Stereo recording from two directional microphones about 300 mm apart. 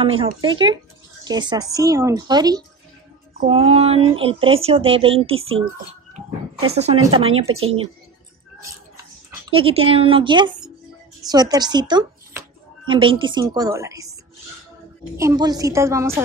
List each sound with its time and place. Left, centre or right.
0.0 s speech: centre
6.7 s speech: centre
7.4 s speech: right
8.9 s a sound: centre
11.2 s speech: centre
15.1 s speech: centre